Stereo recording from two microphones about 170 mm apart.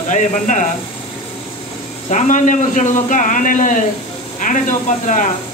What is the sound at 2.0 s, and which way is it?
Speech, 45° left (ahead or behind).